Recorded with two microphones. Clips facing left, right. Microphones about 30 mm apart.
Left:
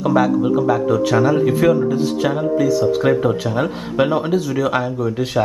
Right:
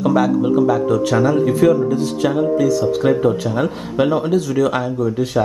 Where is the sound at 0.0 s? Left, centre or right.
Centre.